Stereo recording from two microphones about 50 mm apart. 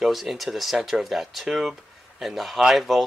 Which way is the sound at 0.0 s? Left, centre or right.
Centre.